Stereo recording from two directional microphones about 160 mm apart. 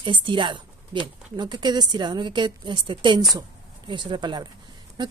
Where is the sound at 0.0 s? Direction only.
30° right (ahead or behind).